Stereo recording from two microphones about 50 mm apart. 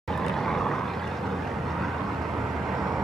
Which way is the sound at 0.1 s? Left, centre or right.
Centre.